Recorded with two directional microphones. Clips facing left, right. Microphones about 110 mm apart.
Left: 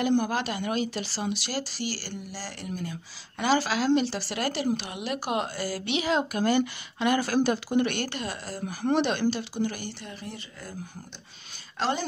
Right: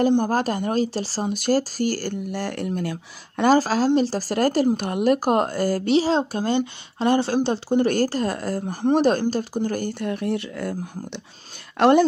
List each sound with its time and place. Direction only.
0.2 s speech: 40° right (ahead or behind); by 3.4 s 70° right (ahead or behind)
3.4 s a woman's voice: 40° right (ahead or behind); by 10.8 s 65° right (ahead or behind)
11.8 s speech: 60° right (ahead or behind)